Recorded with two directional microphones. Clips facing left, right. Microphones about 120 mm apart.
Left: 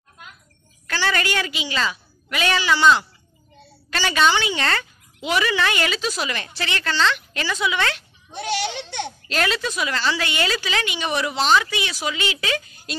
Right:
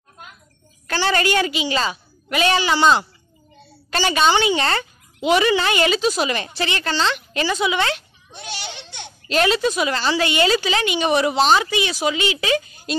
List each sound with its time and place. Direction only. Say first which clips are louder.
0.8 s a woman's voice: right 4 dB; 35° right (ahead or behind)
4.1 s speech: right 2 dB; 25° right (ahead or behind)
8.3 s a child's voice: left 8 dB; 70° left (ahead or behind)
9.3 s speech: right 7 dB; 20° right (ahead or behind)